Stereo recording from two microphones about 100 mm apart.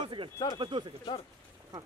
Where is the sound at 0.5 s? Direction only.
55° right (ahead or behind).